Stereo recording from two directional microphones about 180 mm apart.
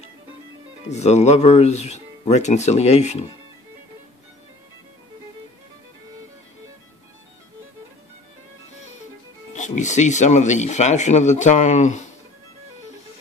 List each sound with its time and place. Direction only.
0.8 s speech: 40° left (ahead or behind)
9.5 s speech: 40° left (ahead or behind)